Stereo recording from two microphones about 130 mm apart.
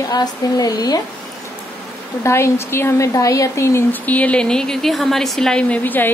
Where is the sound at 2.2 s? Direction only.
20° left (ahead or behind).